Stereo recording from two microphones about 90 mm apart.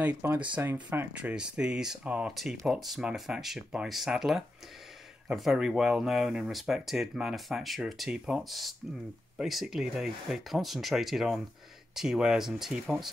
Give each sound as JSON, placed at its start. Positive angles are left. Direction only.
{"t": 0.0, "sound": "speech", "side_deg": -15}